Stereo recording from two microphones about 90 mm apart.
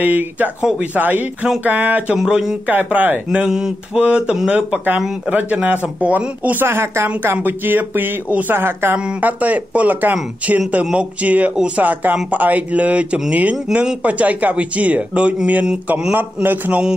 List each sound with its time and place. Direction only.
0.0 s speech: 20° right (ahead or behind)
2.1 s speech: 5° right (ahead or behind)
2.7 s speech: 20° right (ahead or behind)
3.3 s speech: 5° right (ahead or behind)